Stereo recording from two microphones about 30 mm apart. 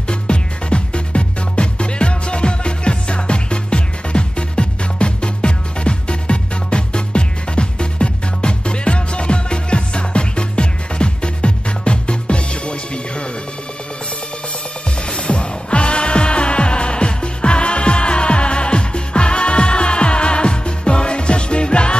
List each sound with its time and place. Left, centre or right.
0.1 s music: left
15.0 s music: left